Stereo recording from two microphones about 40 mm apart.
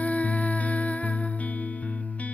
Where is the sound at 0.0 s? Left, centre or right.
Left.